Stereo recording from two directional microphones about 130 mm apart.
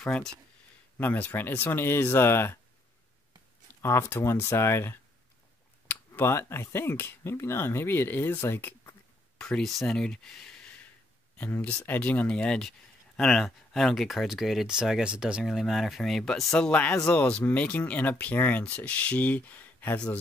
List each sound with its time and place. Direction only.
0.0 s speech: 5° left (ahead or behind)
3.8 s speech: 20° left (ahead or behind)
9.4 s speech: 5° left (ahead or behind)